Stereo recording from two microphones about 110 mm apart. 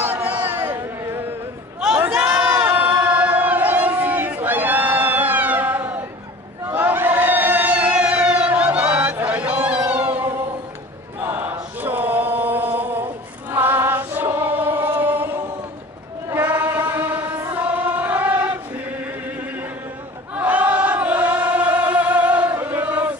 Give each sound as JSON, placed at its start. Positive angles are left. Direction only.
{"t": 0.0, "sound": "a sound", "side_deg": -15}
{"t": 2.0, "sound": "crowd", "side_deg": -10}
{"t": 6.7, "sound": "a sound", "side_deg": -15}
{"t": 11.1, "sound": "chant", "side_deg": -15}
{"t": 13.5, "sound": "choir", "side_deg": -20}
{"t": 14.3, "sound": "music", "side_deg": -20}
{"t": 16.3, "sound": "chant", "side_deg": -20}
{"t": 20.3, "sound": "choir", "side_deg": -15}
{"t": 22.6, "sound": "chant", "side_deg": -15}